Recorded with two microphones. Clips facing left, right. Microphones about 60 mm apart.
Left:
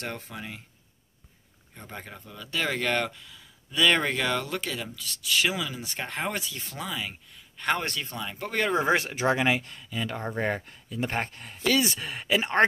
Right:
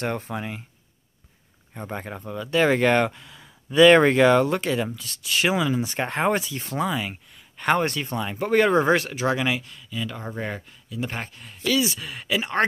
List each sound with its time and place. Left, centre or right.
0.0 s speech: right
1.7 s speech: right
8.8 s speech: centre
9.6 s speech: left